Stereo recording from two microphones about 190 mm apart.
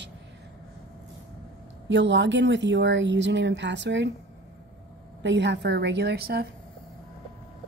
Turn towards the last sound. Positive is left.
turn(degrees=-55)  # may be behind; listen again after turning